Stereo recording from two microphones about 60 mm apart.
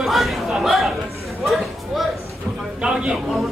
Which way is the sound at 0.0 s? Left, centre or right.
Centre.